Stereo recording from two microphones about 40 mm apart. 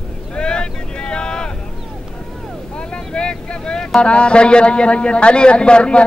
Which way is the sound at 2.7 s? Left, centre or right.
Left.